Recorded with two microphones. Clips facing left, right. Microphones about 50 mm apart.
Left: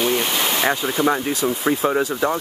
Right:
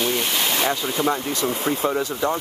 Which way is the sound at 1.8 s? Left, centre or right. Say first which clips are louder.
Left 3 dB; left.